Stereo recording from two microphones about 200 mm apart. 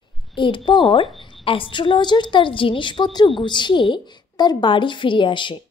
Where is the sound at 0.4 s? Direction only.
25° left (ahead or behind).